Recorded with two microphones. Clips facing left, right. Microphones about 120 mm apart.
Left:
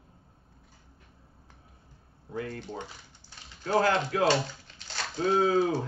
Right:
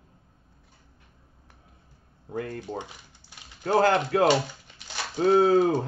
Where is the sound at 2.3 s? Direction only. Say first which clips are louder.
Right 3 dB; 45° right (ahead or behind).